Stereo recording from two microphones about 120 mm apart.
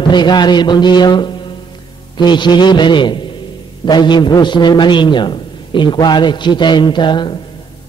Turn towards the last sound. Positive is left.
turn(degrees=40)  # may be behind; listen again after turning